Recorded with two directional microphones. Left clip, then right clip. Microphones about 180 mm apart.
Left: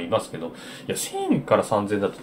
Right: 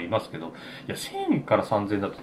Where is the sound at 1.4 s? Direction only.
15° left (ahead or behind).